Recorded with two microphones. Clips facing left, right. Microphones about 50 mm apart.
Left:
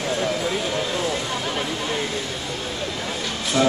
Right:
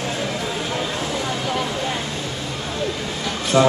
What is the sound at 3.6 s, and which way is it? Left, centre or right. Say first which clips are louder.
Speech: right 4 dB; right.